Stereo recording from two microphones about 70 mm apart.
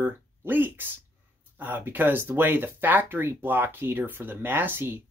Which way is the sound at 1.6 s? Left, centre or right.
Right.